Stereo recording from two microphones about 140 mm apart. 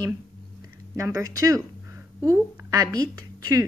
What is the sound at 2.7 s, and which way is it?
Speech, 25° right (ahead or behind).